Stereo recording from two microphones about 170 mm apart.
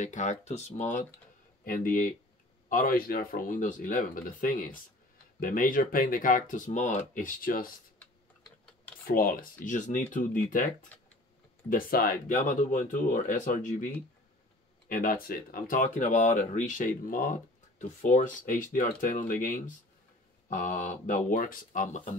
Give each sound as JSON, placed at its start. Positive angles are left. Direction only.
{"t": 0.0, "sound": "speech", "side_deg": 45}
{"t": 8.0, "sound": "typing", "side_deg": 10}
{"t": 9.0, "sound": "speech", "side_deg": 55}
{"t": 10.9, "sound": "computer keyboard", "side_deg": 10}
{"t": 11.7, "sound": "speech", "side_deg": 60}
{"t": 14.9, "sound": "speech", "side_deg": 55}